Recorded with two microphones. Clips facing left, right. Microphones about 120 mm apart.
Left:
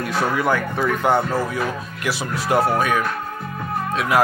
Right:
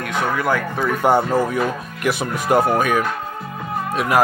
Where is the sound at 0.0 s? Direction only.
35° left (ahead or behind).